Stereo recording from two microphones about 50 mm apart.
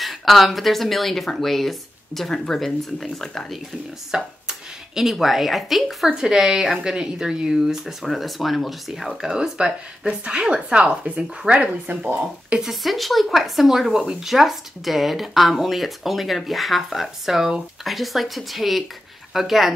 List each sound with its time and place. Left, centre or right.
0.0 s speech: centre
4.1 s a sound: centre
5.1 s speech: centre; by 12.6 s right
12.6 s speech: centre